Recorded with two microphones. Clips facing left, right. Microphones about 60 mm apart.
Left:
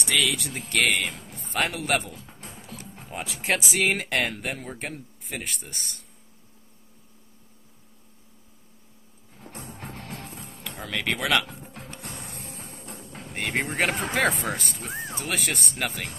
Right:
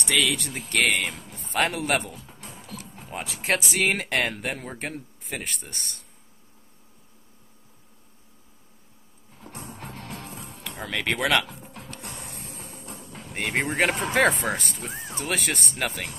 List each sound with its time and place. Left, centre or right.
0.0 s speech: centre
2.6 s music: left
3.1 s speech: centre
9.8 s music: left
10.2 s music: right
10.8 s speech: centre
12.4 s music: left
13.3 s speech: centre
14.9 s speech: left
15.1 s speech: centre